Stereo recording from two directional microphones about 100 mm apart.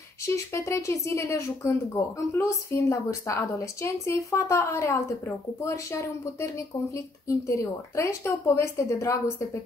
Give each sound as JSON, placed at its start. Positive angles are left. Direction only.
{"t": 0.6, "sound": "a woman's voice", "side_deg": 30}
{"t": 7.2, "sound": "a woman's voice", "side_deg": 30}